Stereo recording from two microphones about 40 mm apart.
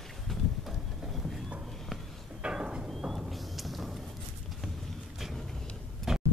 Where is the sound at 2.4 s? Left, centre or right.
Right.